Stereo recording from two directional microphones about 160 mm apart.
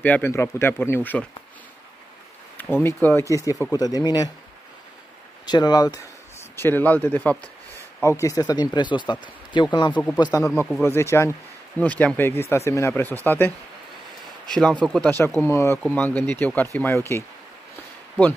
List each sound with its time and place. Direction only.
0.0 s speech: 10° left (ahead or behind)
2.5 s speech: 15° left (ahead or behind)
5.5 s speech: 25° left (ahead or behind)
6.5 s speech: 15° left (ahead or behind)
14.5 s speech: 5° left (ahead or behind)